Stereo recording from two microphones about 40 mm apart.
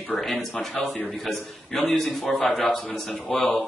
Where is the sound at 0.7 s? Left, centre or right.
Left.